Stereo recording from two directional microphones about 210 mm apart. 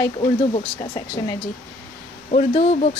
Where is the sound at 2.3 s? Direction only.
30° left (ahead or behind).